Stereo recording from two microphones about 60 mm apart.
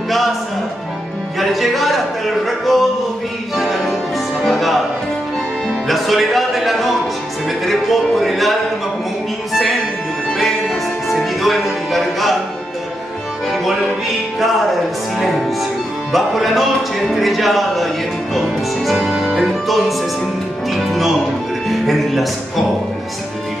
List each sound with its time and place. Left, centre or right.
1.4 s music: centre
2.4 s a sound: centre
3.5 s music: centre
5.9 s music: centre
15.1 s music: centre
18.9 s music: centre
20.7 s speech: centre